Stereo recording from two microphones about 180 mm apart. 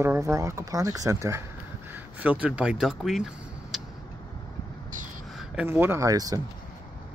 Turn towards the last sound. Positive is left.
turn(degrees=-20)  # may be behind; listen again after turning